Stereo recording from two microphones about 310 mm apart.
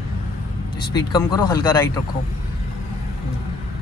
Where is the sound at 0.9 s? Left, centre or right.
Centre.